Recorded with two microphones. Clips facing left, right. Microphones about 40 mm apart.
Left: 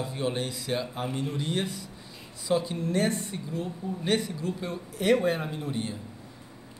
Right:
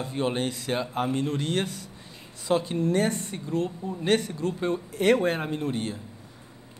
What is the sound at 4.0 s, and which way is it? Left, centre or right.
Speech, right.